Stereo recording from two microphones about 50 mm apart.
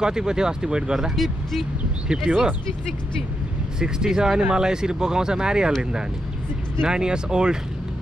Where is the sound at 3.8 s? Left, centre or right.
Centre.